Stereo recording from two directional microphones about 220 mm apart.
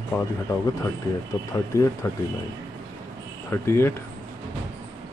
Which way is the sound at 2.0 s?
15° left (ahead or behind).